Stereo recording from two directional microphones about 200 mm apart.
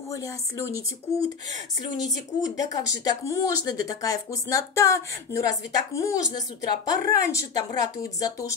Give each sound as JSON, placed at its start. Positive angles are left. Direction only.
{"t": 0.1, "sound": "speech", "side_deg": 15}
{"t": 2.0, "sound": "speech", "side_deg": 0}
{"t": 2.5, "sound": "speech", "side_deg": 15}